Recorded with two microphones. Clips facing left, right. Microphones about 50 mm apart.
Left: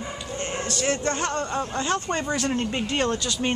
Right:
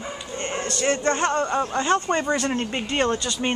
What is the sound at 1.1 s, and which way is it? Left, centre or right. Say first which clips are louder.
Speech: right 4 dB; centre.